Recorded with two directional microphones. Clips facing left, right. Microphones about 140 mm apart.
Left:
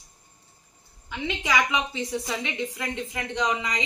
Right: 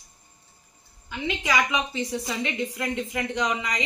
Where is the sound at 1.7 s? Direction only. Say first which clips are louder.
Even; 20° left (ahead or behind).